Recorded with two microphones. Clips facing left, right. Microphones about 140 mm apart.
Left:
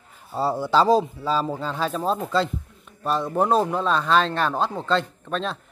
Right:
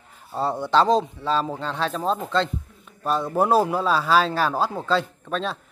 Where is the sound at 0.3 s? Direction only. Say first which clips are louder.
Even; 5° left (ahead or behind).